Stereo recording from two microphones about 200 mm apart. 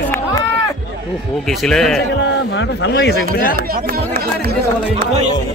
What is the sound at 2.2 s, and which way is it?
Speech, 65° left (ahead or behind).